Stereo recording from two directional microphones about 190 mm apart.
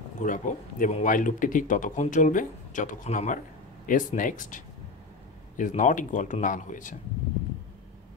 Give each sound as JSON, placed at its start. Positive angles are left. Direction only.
{"t": 0.2, "sound": "speech", "side_deg": 45}